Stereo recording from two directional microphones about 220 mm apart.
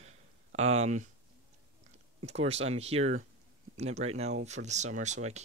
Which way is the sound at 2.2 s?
30° right (ahead or behind).